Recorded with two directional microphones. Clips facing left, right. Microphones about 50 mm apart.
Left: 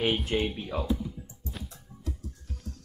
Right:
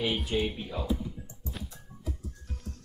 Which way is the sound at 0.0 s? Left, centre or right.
Left.